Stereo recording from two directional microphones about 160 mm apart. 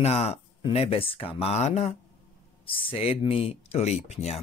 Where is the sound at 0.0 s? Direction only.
40° left (ahead or behind).